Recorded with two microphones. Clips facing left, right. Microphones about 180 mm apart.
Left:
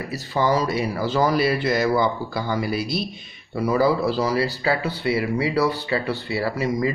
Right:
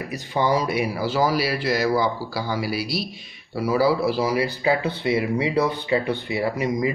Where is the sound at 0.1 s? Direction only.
15° right (ahead or behind).